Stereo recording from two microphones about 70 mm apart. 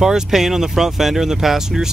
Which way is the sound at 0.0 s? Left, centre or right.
Centre.